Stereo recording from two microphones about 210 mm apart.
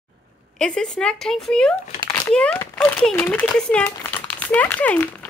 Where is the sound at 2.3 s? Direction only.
5° left (ahead or behind).